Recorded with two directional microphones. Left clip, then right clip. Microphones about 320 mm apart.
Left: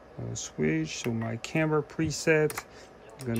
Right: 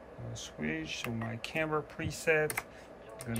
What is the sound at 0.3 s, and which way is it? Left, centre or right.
Speech, centre.